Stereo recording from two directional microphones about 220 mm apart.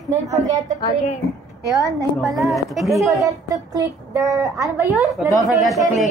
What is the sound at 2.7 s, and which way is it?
Speech, centre (ahead or behind).